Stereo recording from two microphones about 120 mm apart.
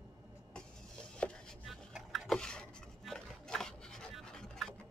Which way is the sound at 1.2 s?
10° left (ahead or behind).